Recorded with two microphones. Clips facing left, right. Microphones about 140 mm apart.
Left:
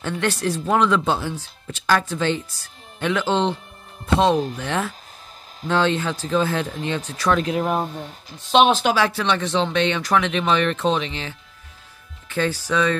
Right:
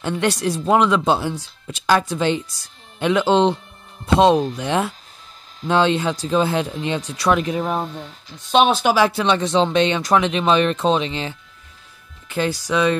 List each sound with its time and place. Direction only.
0.0 s speech: 15° right (ahead or behind)
7.5 s speech: 5° left (ahead or behind); by 13.0 s 15° right (ahead or behind)